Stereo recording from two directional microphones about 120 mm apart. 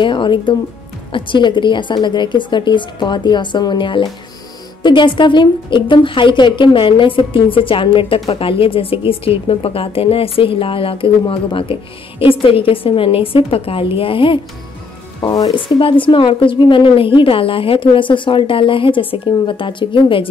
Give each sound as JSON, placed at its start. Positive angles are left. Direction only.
{"t": 0.0, "sound": "a woman's voice", "side_deg": 45}
{"t": 15.2, "sound": "a woman's voice", "side_deg": 30}
{"t": 15.5, "sound": "a woman's voice", "side_deg": 45}